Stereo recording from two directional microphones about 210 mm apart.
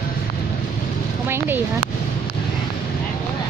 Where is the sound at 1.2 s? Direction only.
10° right (ahead or behind).